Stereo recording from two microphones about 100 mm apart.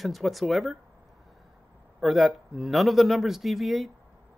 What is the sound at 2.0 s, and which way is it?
Speech, centre (ahead or behind).